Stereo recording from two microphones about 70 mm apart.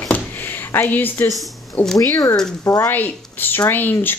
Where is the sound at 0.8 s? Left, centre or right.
Left.